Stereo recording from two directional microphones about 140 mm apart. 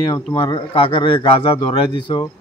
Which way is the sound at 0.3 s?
30° left (ahead or behind).